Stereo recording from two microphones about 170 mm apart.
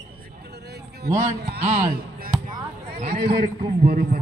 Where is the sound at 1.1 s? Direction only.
75° right (ahead or behind).